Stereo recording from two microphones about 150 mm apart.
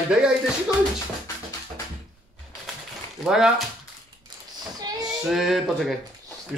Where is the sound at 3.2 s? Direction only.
5° right (ahead or behind).